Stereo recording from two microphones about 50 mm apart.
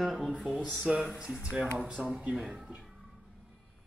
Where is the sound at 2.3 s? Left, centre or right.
Right.